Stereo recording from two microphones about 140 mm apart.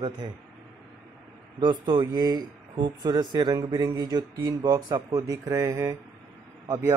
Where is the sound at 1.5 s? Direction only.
30° right (ahead or behind).